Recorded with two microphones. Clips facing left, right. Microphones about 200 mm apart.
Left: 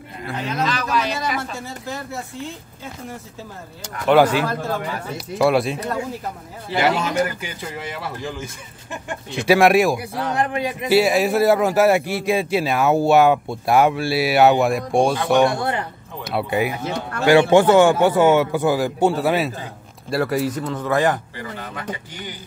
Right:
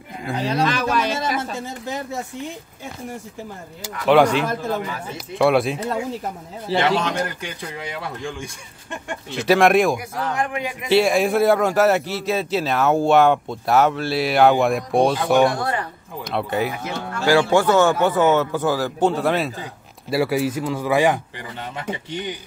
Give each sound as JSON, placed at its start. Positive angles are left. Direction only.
{"t": 0.4, "sound": "a sound", "side_deg": -35}
{"t": 0.7, "sound": "a sound", "side_deg": -50}
{"t": 1.4, "sound": "a sound", "side_deg": -20}
{"t": 3.8, "sound": "speech", "side_deg": 0}
{"t": 6.8, "sound": "speech", "side_deg": 5}
{"t": 9.9, "sound": "a man's voice", "side_deg": 35}
{"t": 10.9, "sound": "a man's voice", "side_deg": 5}
{"t": 16.3, "sound": "a man's voice", "side_deg": 10}
{"t": 16.8, "sound": "a man's voice", "side_deg": 20}
{"t": 21.9, "sound": "speech", "side_deg": -20}